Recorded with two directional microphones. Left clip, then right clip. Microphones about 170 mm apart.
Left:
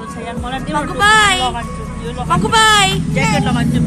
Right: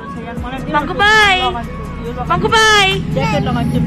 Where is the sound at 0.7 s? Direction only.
15° right (ahead or behind).